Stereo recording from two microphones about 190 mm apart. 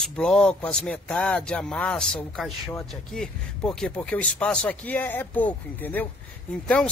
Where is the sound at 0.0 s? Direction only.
5° left (ahead or behind).